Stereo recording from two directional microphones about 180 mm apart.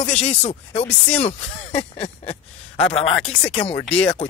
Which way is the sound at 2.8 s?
30° left (ahead or behind).